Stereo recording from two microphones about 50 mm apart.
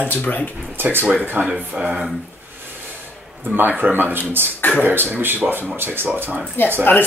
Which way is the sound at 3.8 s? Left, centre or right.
Right.